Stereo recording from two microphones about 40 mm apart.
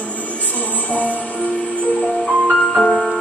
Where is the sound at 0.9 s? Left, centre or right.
Left.